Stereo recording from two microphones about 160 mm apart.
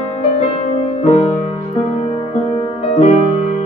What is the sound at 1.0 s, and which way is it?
Music, 40° left (ahead or behind).